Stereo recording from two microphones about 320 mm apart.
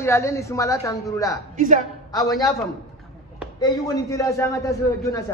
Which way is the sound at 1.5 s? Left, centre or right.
Right.